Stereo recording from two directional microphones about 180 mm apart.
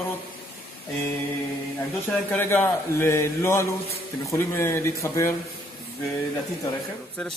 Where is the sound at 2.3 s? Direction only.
10° left (ahead or behind).